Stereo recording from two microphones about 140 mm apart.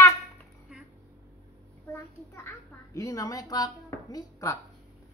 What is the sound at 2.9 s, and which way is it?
A woman's voice, 25° left (ahead or behind).